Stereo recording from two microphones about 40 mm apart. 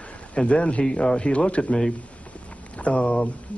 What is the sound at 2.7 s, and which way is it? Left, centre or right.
Speech, left.